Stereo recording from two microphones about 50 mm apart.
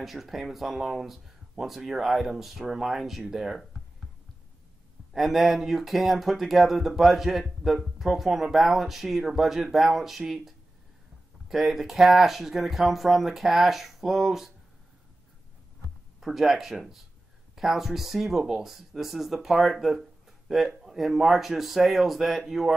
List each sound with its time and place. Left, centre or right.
0.0 s speech: centre
5.1 s speech: centre
16.2 s speech: centre